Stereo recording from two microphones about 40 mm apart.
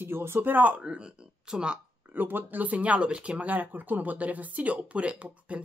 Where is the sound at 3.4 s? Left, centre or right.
Right.